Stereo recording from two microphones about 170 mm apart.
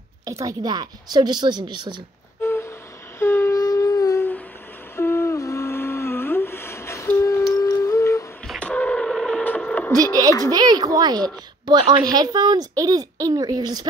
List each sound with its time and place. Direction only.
0.2 s a woman's voice: 20° right (ahead or behind)
2.4 s a sound: 15° left (ahead or behind)
4.9 s humming: 15° left (ahead or behind)
7.5 s music: 20° left (ahead or behind)
8.5 s radio: 5° left (ahead or behind)
10.5 s a sound: 25° right (ahead or behind)
11.6 s a woman's voice: 25° right (ahead or behind)